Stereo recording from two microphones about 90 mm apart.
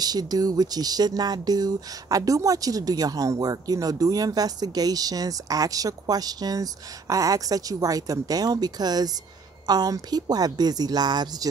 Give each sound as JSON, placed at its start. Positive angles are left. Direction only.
{"t": 0.0, "sound": "speech", "side_deg": -45}